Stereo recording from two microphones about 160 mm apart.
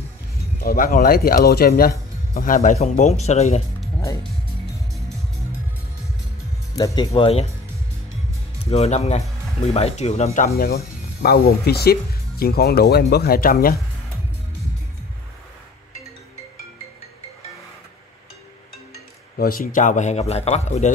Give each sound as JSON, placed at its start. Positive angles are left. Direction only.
{"t": 0.6, "sound": "speech", "side_deg": 65}
{"t": 4.0, "sound": "speech", "side_deg": 20}
{"t": 6.7, "sound": "speech", "side_deg": 20}
{"t": 7.2, "sound": "speech", "side_deg": 40}
{"t": 8.6, "sound": "speech", "side_deg": 40}
{"t": 10.5, "sound": "speech", "side_deg": 75}
{"t": 19.3, "sound": "a man's voice", "side_deg": 65}